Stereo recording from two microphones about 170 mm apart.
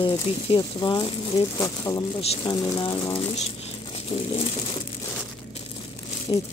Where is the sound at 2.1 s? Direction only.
35° left (ahead or behind).